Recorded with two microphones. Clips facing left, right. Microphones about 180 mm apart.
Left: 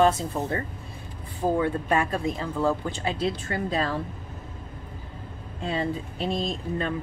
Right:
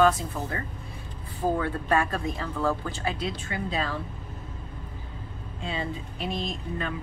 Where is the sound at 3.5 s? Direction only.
40° left (ahead or behind).